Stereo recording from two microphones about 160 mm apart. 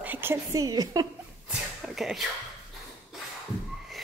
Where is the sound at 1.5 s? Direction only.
Centre (ahead or behind).